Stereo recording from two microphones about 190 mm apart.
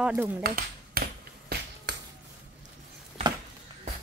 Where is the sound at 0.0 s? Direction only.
5° right (ahead or behind).